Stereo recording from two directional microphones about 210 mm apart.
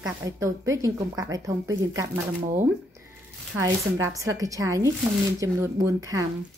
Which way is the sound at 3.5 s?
15° right (ahead or behind).